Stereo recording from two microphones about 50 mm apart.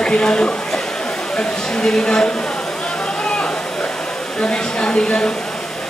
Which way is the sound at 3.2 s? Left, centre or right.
Centre.